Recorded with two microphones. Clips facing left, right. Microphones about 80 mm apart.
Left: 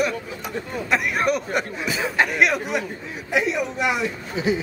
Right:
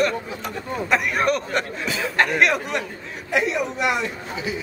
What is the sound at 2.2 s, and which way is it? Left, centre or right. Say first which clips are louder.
Speech: right 1 dB; centre.